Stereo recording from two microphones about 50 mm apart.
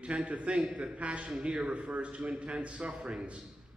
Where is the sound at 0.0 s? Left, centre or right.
Right.